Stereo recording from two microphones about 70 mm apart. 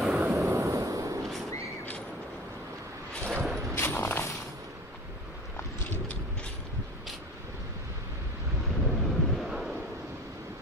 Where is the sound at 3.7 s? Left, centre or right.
Left.